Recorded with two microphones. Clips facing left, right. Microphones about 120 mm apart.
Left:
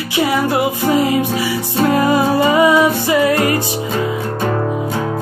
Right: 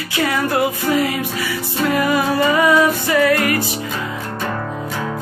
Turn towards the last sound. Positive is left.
turn(degrees=25)  # may be behind; listen again after turning